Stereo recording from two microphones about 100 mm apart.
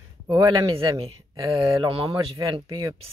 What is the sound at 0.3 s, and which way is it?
Speech, 45° right (ahead or behind).